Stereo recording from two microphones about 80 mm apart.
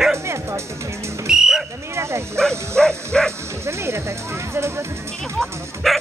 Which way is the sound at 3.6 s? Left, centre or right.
Right.